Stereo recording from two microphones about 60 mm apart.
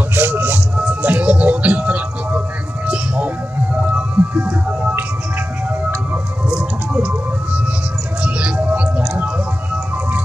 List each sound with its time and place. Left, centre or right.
0.1 s music: right
3.8 s music: right
6.9 s music: right